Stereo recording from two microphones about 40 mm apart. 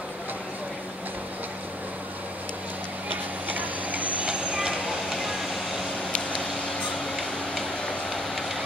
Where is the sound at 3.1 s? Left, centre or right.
Right.